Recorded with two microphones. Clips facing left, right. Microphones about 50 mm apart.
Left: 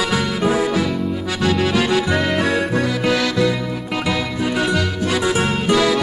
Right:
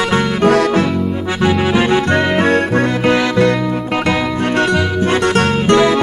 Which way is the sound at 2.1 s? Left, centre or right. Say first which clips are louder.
Right 4 dB; centre.